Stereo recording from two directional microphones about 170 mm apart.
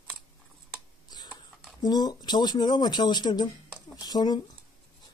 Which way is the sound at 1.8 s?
25° left (ahead or behind).